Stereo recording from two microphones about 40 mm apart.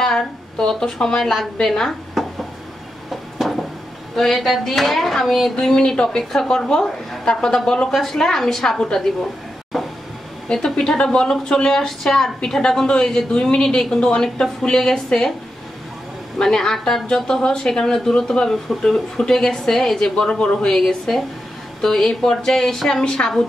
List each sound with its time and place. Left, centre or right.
0.0 s speech: centre
3.1 s a sound: centre
4.1 s speech: centre
5.8 s speech: left
6.0 s speech: centre
9.7 s a sound: centre
10.5 s speech: centre
16.3 s speech: centre
20.0 s speech: left
20.7 s speech: centre